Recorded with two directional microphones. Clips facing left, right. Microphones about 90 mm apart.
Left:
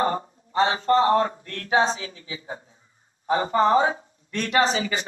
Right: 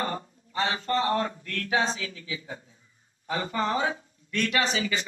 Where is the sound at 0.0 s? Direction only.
30° left (ahead or behind).